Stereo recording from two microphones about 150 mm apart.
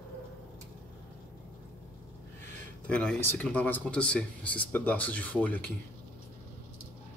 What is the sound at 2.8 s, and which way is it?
Speech, 10° left (ahead or behind).